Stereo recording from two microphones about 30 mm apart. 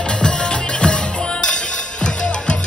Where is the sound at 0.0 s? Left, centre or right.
Left.